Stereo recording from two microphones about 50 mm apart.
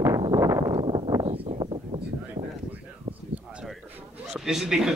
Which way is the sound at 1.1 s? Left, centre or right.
Right.